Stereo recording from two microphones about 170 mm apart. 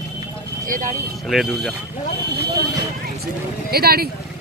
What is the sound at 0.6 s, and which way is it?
Speech, 50° right (ahead or behind).